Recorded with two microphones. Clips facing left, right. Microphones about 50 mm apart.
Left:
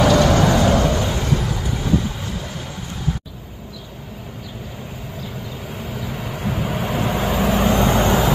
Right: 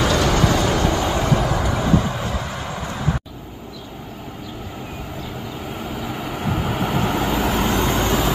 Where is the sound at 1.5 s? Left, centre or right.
Right.